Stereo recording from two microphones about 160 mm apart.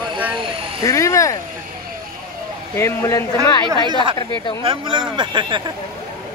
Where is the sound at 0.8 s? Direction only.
20° left (ahead or behind).